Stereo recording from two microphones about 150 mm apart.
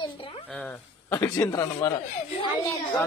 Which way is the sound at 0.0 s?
35° left (ahead or behind).